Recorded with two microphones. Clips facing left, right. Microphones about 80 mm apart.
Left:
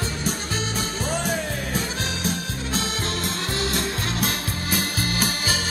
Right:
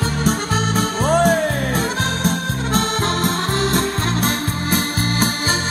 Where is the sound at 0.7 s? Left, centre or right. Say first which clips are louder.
Right 13 dB; right.